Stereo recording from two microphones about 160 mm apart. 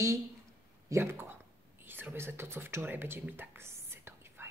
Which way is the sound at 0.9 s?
15° right (ahead or behind).